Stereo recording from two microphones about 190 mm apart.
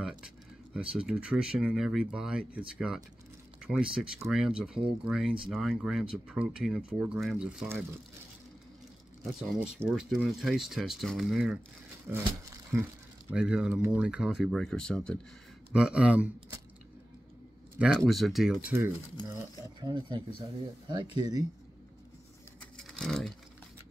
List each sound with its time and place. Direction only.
0.7 s speech: 5° right (ahead or behind)
3.6 s speech: 5° right (ahead or behind)
9.2 s speech: 5° right (ahead or behind)
12.1 s speech: 15° right (ahead or behind)
17.7 s speech: centre (ahead or behind)
19.8 s speech: 25° right (ahead or behind)
22.6 s vehicle: centre (ahead or behind)